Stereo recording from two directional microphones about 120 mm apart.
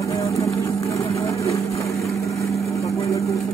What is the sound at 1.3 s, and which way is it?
Vehicle, 25° left (ahead or behind).